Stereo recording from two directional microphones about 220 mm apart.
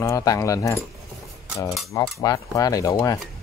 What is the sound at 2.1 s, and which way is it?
Speech, 15° left (ahead or behind).